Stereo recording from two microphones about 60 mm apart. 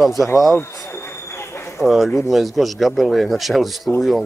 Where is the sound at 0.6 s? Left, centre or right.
Left.